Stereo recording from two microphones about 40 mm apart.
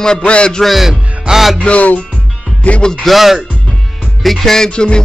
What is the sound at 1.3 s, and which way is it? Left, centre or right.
Speech, centre.